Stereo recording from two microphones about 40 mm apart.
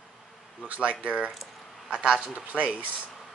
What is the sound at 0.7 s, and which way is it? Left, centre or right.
Speech, right.